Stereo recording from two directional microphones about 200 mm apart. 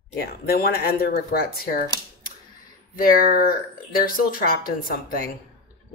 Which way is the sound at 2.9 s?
45° left (ahead or behind).